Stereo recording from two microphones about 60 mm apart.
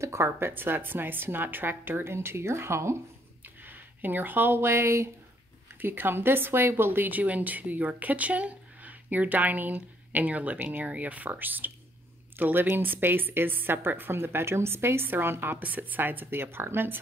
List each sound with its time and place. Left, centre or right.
0.0 s speech: right
0.5 s a woman's voice: right
3.4 s a woman's voice: right